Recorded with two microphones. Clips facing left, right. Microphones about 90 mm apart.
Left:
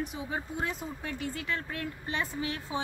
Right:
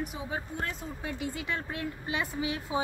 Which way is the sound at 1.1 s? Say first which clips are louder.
Even; 20° right (ahead or behind).